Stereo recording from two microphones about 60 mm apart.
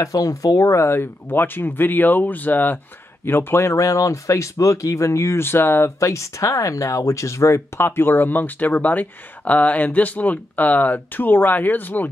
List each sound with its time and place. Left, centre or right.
0.0 s speech: left
0.9 s speech: left
5.9 s speech: left